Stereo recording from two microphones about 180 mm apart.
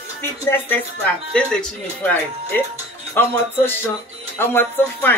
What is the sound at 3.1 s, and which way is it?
Speech, 15° left (ahead or behind).